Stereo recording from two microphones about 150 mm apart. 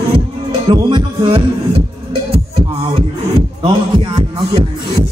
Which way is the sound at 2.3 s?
40° right (ahead or behind).